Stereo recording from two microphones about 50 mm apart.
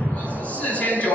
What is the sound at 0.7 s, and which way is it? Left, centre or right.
Speech, left.